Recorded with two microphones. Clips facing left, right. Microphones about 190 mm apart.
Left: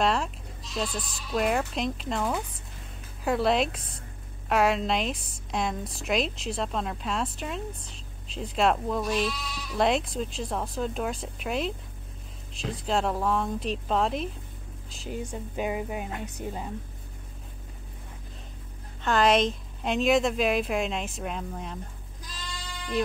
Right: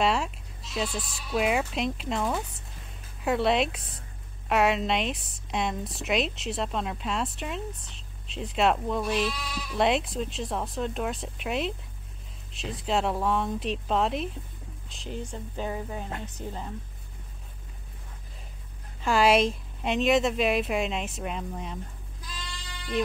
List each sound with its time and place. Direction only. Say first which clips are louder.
0.0 s a woman's voice: even; 5° right (ahead or behind)
14.9 s music: left 2 dB; 5° left (ahead or behind)
19.0 s a woman's voice: right 1 dB; 5° right (ahead or behind)